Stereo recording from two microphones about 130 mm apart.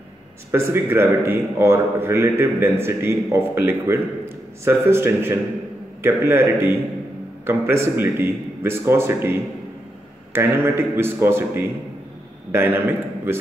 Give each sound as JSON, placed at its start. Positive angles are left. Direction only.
{"t": 0.5, "sound": "a man's voice", "side_deg": -20}